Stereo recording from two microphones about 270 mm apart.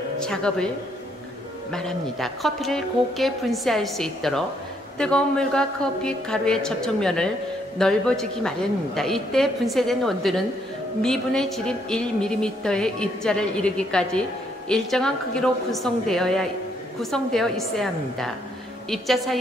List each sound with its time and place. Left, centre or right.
0.2 s speech: centre
1.7 s a woman's voice: centre